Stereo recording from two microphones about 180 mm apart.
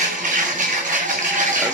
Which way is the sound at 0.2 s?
45° right (ahead or behind).